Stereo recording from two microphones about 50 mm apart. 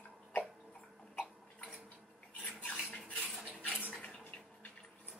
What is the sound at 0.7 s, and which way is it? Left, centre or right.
Cough, left.